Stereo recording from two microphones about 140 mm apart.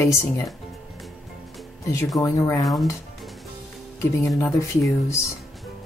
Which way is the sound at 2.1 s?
25° left (ahead or behind).